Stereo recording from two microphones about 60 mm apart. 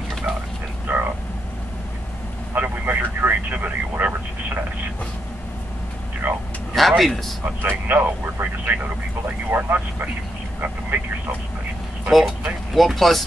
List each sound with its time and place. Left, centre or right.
0.8 s frog: right
2.5 s vehicle: right
6.2 s a sound: right
6.7 s a sound: centre
7.4 s speech: right
12.1 s speech: centre